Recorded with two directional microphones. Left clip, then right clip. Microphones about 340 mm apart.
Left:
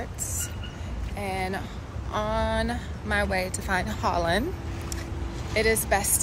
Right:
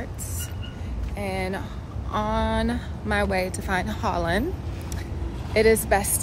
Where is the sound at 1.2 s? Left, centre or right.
Centre.